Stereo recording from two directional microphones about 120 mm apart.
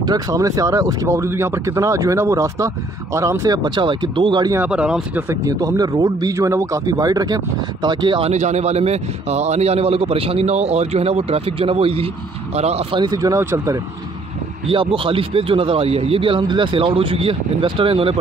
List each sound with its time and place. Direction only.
0.0 s speech: 30° right (ahead or behind)
4.6 s speech: 5° right (ahead or behind)
5.3 s speech: 30° right (ahead or behind)
8.3 s a man's voice: 65° right (ahead or behind)
12.9 s speech: 35° right (ahead or behind)
14.7 s speech: 50° right (ahead or behind)